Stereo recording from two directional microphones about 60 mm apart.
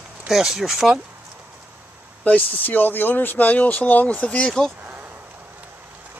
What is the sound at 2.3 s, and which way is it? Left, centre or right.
Speech, left.